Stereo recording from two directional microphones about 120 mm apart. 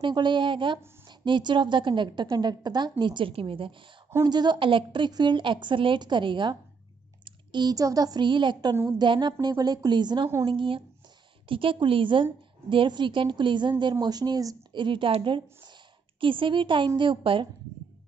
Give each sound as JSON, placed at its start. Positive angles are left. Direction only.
{"t": 0.0, "sound": "a woman's voice", "side_deg": -40}
{"t": 4.1, "sound": "a woman's voice", "side_deg": -30}